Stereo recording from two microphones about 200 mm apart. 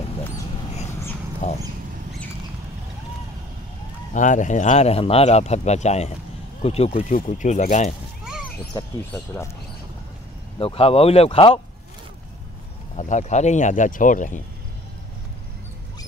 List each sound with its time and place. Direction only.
1.4 s a sound: 35° left (ahead or behind)
4.1 s speech: 40° left (ahead or behind)
9.1 s speech: 10° left (ahead or behind)
10.6 s speech: 30° left (ahead or behind)
12.9 s speech: 35° left (ahead or behind)